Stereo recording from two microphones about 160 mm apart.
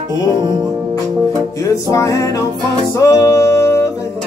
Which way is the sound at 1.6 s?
20° left (ahead or behind).